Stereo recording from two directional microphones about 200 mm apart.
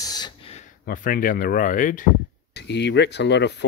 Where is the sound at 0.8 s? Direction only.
45° left (ahead or behind).